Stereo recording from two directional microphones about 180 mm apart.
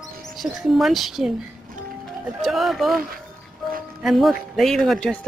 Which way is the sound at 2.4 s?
Centre (ahead or behind).